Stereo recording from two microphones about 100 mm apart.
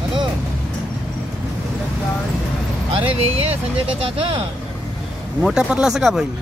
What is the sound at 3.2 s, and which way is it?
Speech, 85° right.